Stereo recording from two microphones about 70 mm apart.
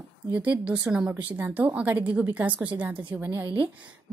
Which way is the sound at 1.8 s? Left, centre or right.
Right.